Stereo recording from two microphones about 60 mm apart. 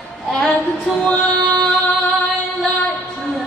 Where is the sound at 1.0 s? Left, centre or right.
Left.